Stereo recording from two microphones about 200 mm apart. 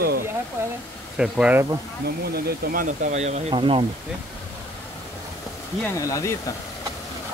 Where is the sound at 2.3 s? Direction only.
50° right (ahead or behind); by 3.8 s 25° right (ahead or behind).